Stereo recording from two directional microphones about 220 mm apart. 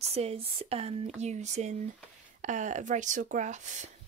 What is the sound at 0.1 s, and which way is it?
Speech, 25° right (ahead or behind).